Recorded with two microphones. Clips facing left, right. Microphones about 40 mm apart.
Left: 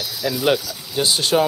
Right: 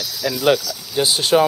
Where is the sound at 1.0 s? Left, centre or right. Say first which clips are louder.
Right 2 dB; centre.